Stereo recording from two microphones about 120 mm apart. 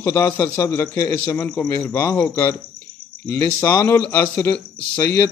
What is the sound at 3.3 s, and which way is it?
A man's voice, 25° left (ahead or behind).